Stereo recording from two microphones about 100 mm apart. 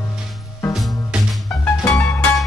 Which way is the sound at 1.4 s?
20° left (ahead or behind).